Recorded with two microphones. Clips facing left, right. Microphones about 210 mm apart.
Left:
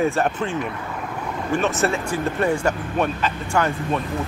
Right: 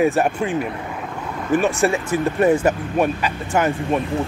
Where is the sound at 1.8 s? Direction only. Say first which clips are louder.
Right 3 dB; 20° right (ahead or behind).